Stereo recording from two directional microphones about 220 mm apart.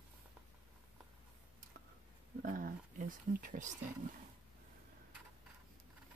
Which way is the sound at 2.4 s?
40° right (ahead or behind).